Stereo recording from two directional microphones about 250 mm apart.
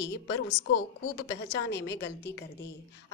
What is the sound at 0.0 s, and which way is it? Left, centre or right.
Speech, left.